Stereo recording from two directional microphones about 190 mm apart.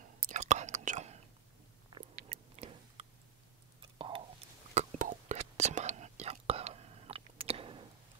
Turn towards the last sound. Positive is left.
turn(degrees=-30)  # may be behind; listen again after turning